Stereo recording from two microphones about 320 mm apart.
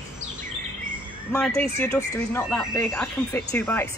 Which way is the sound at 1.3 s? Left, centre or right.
Centre.